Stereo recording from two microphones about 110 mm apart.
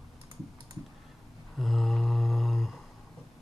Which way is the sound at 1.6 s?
Centre (ahead or behind).